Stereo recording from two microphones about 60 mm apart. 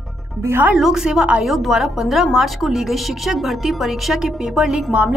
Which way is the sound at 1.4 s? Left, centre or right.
Centre.